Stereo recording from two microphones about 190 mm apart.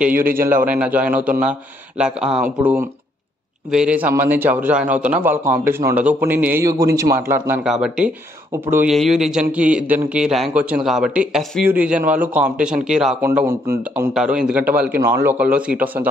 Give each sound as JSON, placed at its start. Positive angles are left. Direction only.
{"t": 0.7, "sound": "a man's voice", "side_deg": -10}
{"t": 3.7, "sound": "a man's voice", "side_deg": -5}
{"t": 8.9, "sound": "a man's voice", "side_deg": 0}